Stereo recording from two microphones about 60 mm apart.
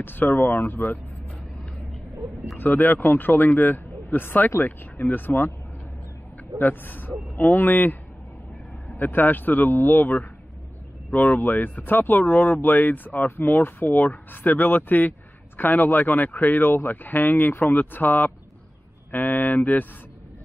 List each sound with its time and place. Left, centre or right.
0.0 s speech: left
2.5 s speech: left
6.6 s speech: left
11.3 s speech: left